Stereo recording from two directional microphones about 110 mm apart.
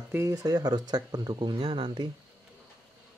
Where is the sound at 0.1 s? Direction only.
25° right (ahead or behind); by 2.0 s 45° right (ahead or behind).